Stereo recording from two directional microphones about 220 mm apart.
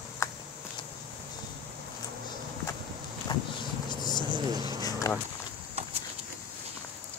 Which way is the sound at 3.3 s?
20° left (ahead or behind).